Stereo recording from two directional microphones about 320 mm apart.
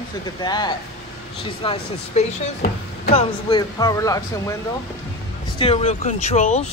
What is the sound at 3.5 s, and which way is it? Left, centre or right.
Speech, centre.